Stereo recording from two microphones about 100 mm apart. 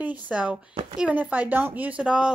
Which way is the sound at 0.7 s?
75° right (ahead or behind).